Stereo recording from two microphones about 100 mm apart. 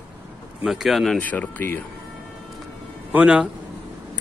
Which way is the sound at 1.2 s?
15° left (ahead or behind).